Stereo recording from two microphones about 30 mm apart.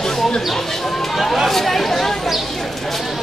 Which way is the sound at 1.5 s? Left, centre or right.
Centre.